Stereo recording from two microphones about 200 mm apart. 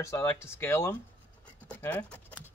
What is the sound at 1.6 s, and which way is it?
Scratch, 10° left (ahead or behind).